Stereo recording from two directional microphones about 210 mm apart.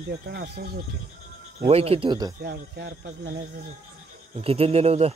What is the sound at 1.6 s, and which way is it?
Speech, 25° right (ahead or behind).